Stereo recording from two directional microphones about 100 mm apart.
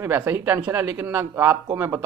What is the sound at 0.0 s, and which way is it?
Speech, 25° right (ahead or behind).